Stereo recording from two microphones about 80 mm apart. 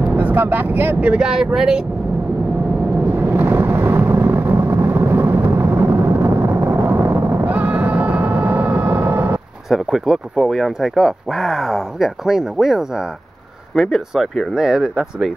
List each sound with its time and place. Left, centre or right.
0.1 s speech: right
1.0 s speech: centre
3.2 s vehicle: right
9.7 s speech: centre